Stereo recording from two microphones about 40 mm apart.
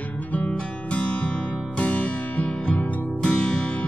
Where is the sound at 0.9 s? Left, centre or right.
Left.